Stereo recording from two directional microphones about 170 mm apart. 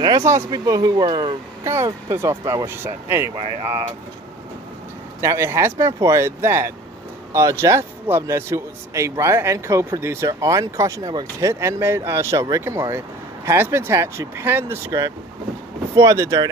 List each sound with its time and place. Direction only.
0.0 s speech: 20° right (ahead or behind)
5.2 s speech: 15° right (ahead or behind)